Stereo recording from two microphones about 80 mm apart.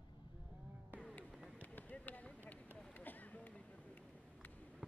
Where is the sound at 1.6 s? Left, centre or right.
Left.